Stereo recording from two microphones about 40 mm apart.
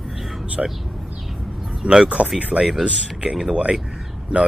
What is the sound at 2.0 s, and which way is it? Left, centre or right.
Speech, right.